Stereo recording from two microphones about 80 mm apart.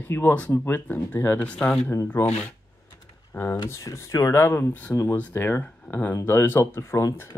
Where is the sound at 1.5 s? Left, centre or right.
Centre.